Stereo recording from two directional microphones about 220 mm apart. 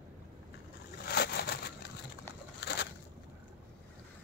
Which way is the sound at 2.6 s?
50° left (ahead or behind).